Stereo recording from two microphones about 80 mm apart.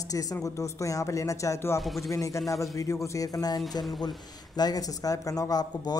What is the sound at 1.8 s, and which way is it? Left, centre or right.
Speech, centre.